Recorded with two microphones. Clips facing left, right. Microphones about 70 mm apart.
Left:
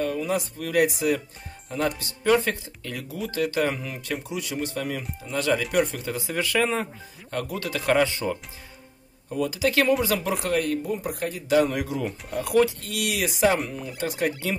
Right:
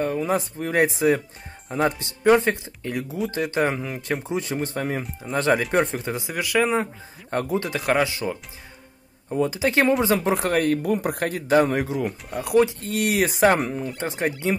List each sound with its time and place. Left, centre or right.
0.0 s speech: right
6.3 s speech: centre
7.2 s speech: right
7.8 s speech: centre
9.3 s speech: right
10.4 s speech: right
12.0 s speech: centre
12.4 s speech: right
12.9 s speech: right
13.9 s speech: right